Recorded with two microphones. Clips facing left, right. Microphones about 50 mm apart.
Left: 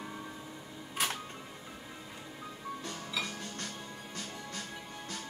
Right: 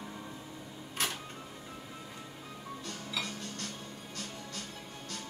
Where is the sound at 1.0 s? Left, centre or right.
Centre.